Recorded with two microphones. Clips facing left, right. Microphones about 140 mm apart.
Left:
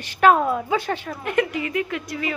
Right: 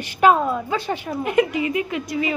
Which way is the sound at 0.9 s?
10° right (ahead or behind).